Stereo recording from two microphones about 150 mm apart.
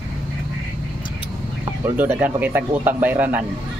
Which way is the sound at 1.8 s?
15° right (ahead or behind).